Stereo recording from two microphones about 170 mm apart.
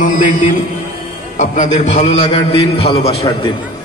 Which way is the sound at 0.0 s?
45° left (ahead or behind).